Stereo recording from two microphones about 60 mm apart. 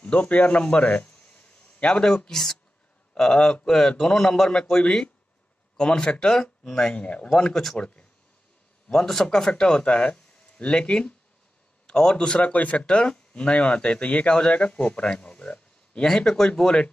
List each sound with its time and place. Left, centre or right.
0.0 s speech: left